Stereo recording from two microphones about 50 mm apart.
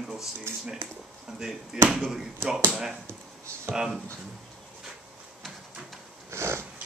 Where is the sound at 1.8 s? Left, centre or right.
Centre.